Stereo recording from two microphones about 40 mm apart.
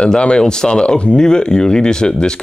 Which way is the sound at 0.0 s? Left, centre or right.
Left.